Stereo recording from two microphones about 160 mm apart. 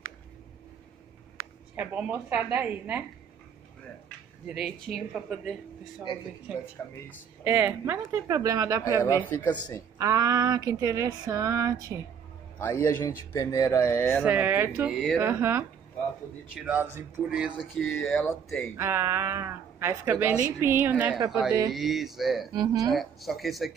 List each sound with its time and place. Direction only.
1.8 s speech: 10° right (ahead or behind)
4.5 s a woman's voice: 5° right (ahead or behind); by 8.8 s 20° right (ahead or behind)
9.0 s speech: 15° left (ahead or behind)
9.9 s a sound: 20° right (ahead or behind)
12.5 s a man's voice: 15° left (ahead or behind)
14.2 s speech: 10° right (ahead or behind)
15.1 s a woman's voice: 15° right (ahead or behind); by 18.7 s 5° left (ahead or behind)
18.8 s a woman's voice: 15° right (ahead or behind)
22.5 s a sound: 25° right (ahead or behind)
22.8 s a woman's voice: centre (ahead or behind)